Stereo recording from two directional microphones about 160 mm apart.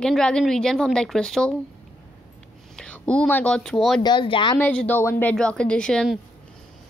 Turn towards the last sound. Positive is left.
turn(degrees=0)  # may be behind; listen again after turning